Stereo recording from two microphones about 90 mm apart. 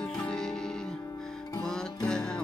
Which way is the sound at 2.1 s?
10° left (ahead or behind).